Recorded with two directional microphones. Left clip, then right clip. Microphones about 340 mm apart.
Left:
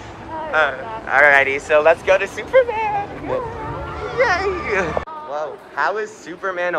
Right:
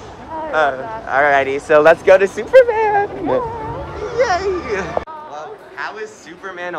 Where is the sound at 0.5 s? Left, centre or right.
Centre.